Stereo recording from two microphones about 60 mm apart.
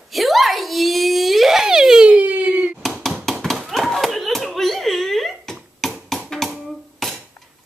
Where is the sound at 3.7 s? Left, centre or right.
Centre.